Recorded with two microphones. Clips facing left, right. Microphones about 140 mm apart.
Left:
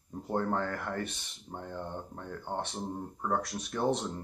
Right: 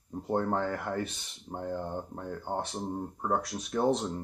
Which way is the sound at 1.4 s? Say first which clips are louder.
Right 7 dB; 25° right (ahead or behind).